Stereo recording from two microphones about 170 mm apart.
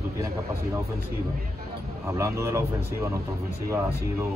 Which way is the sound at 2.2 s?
15° right (ahead or behind).